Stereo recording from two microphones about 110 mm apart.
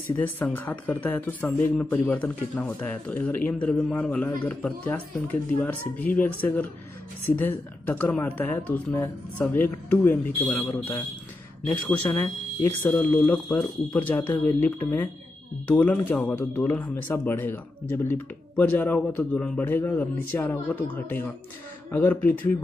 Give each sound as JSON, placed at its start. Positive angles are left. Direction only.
{"t": 0.4, "sound": "speech", "side_deg": 15}
{"t": 7.8, "sound": "speech", "side_deg": 15}
{"t": 12.2, "sound": "speech", "side_deg": 15}